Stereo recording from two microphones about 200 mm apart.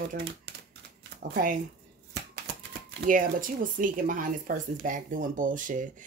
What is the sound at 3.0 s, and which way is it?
Speech, 40° right (ahead or behind).